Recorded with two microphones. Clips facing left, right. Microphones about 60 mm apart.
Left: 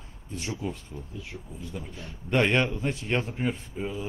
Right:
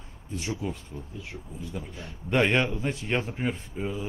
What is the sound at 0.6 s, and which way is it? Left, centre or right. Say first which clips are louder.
A man's voice: even; centre.